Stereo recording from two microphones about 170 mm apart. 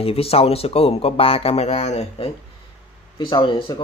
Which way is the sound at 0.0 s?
35° left (ahead or behind).